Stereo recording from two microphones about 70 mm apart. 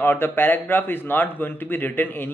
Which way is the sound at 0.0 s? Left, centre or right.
Left.